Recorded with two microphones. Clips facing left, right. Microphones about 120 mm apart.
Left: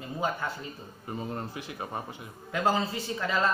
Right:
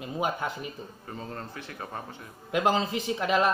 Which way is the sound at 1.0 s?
15° left (ahead or behind).